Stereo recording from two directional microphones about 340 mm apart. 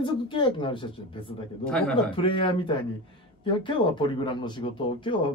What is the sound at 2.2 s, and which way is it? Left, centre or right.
Speech, centre.